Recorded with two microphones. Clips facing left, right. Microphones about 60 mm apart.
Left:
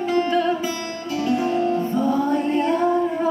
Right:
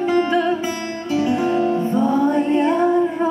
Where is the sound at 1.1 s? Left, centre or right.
Right.